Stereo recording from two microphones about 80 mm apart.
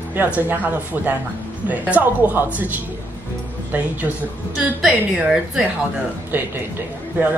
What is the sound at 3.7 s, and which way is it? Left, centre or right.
Speech, right.